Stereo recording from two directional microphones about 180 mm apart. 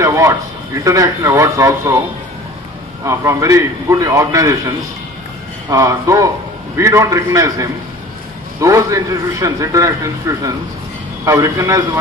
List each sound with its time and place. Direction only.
0.0 s a sound: 15° right (ahead or behind)
0.8 s a man's voice: 20° right (ahead or behind)
3.1 s a man's voice: 15° right (ahead or behind)